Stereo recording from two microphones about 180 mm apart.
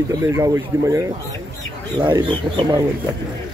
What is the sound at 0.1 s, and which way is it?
Speech, 15° right (ahead or behind).